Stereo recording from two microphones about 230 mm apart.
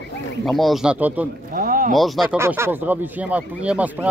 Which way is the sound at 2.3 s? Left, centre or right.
Centre.